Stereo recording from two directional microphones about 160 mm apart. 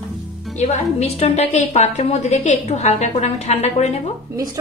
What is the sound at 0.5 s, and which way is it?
A woman's voice, 45° left (ahead or behind).